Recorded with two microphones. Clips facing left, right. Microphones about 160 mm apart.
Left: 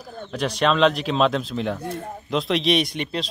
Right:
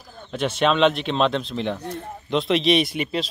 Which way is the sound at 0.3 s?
Centre (ahead or behind).